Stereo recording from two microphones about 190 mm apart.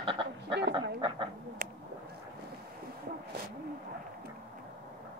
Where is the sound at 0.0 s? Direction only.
25° right (ahead or behind).